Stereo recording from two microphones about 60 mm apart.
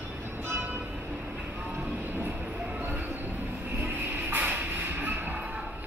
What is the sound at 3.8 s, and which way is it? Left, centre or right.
Music, right.